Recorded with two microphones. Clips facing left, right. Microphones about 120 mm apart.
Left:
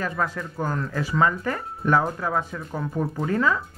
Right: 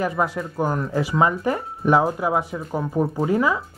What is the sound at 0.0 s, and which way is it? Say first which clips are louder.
Speech: right 4 dB; 15° right (ahead or behind).